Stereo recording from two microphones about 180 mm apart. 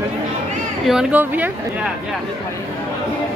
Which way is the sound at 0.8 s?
5° right (ahead or behind).